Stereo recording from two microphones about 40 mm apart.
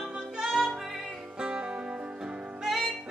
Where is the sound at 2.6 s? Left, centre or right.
Centre.